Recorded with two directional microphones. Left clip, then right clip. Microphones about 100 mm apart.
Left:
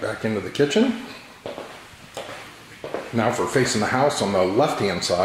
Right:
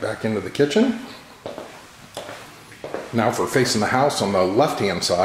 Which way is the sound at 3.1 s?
15° right (ahead or behind).